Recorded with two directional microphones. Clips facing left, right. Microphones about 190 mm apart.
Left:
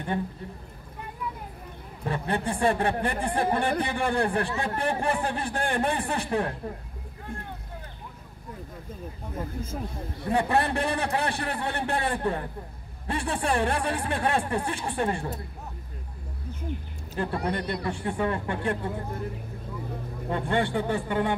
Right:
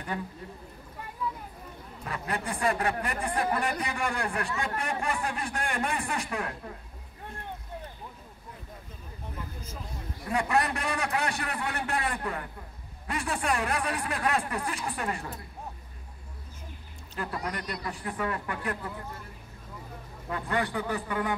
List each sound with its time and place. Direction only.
2.0 s speech: 30° left (ahead or behind)
9.4 s speech: 50° left (ahead or behind)
10.2 s speech: 30° left (ahead or behind)
17.2 s speech: 30° left (ahead or behind)
20.2 s speech: 30° left (ahead or behind)